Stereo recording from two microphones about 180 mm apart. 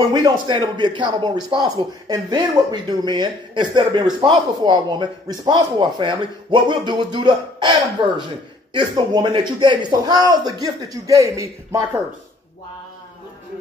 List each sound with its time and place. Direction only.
0.1 s a man's voice: 25° right (ahead or behind)
8.7 s a man's voice: 25° right (ahead or behind)